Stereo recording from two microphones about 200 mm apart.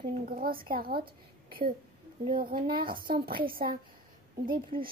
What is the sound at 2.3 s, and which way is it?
Speech, 45° right (ahead or behind).